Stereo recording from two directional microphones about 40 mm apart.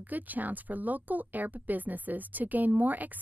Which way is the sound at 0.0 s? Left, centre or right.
Right.